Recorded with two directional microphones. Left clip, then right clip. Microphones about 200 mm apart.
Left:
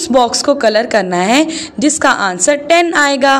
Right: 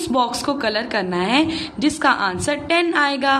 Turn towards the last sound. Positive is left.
turn(degrees=35)  # may be behind; listen again after turning